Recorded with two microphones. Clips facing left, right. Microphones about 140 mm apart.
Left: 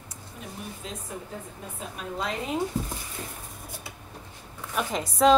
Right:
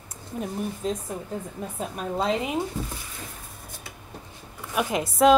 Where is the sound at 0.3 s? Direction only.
55° right (ahead or behind).